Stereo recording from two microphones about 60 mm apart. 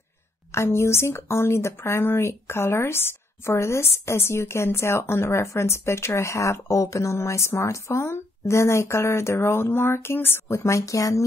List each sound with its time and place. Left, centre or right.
0.5 s speech: left
10.5 s speech: left